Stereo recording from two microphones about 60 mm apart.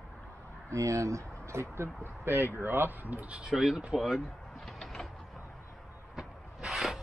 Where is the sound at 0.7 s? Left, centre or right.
Right.